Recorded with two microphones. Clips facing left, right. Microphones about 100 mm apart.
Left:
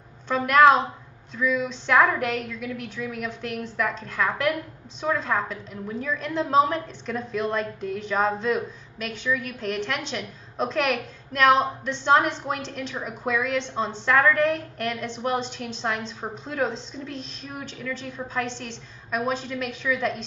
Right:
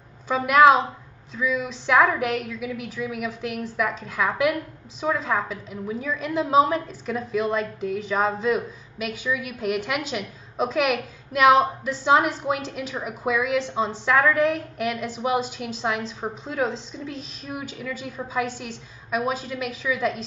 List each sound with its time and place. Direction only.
0.3 s a woman's voice: 5° right (ahead or behind)